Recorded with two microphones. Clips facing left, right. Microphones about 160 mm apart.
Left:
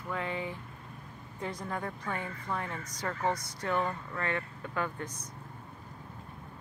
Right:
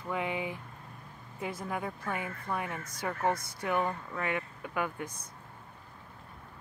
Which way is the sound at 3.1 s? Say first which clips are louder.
Right 1 dB; 55° right (ahead or behind).